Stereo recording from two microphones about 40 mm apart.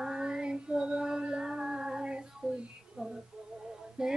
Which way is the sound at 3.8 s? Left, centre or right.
Centre.